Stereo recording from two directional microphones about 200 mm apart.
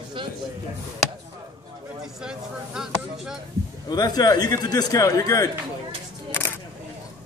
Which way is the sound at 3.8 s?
20° left (ahead or behind).